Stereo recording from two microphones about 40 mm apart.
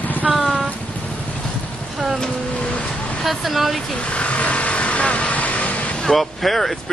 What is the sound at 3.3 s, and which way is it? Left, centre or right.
Speech, centre.